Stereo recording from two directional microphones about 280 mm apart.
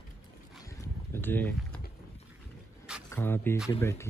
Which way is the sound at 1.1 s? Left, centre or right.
Centre.